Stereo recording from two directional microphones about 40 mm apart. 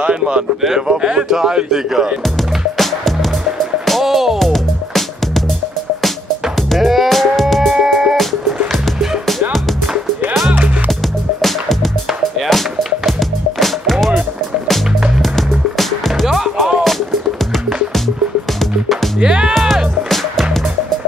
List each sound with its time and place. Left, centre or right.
0.0 s a sound: right
0.6 s speech: centre
0.8 s speech: centre
2.2 s music: centre
4.0 s music: centre
4.5 s music: centre
6.5 s music: centre
7.8 s music: centre
11.4 s music: centre
15.3 s music: centre
18.6 s music: centre
19.1 s music: right